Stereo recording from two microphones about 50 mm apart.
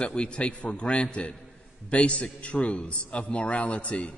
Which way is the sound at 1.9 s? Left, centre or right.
Left.